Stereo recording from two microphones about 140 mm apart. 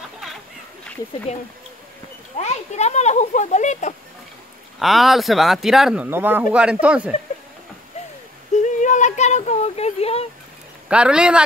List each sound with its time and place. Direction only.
2.3 s speech: 55° left (ahead or behind)
4.7 s speech: centre (ahead or behind)
6.0 s speech: 15° right (ahead or behind)
8.6 s a sound: 60° left (ahead or behind)
10.9 s speech: 5° right (ahead or behind)